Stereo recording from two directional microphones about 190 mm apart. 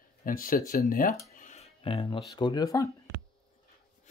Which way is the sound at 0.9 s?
45° left (ahead or behind).